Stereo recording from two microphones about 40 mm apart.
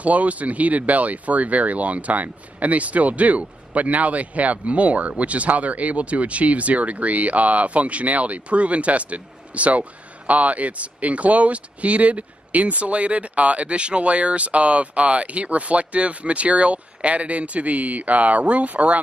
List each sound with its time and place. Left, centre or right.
0.0 s speech: right